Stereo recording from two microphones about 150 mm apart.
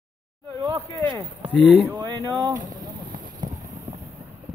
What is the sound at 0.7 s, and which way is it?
Speech, 30° right (ahead or behind).